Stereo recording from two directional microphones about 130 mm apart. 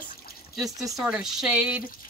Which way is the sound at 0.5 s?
Centre (ahead or behind).